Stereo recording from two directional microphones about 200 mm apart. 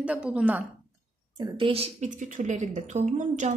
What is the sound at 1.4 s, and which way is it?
A woman's voice, 25° right (ahead or behind).